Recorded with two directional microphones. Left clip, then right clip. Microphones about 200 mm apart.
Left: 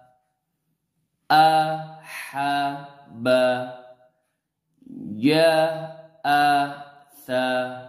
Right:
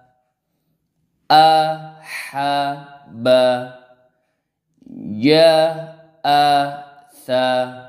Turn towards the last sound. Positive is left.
turn(degrees=-30)  # may be behind; listen again after turning